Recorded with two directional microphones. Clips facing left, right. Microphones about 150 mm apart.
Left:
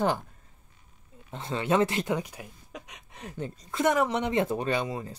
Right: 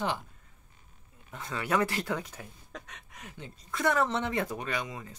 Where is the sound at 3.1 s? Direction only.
30° left (ahead or behind).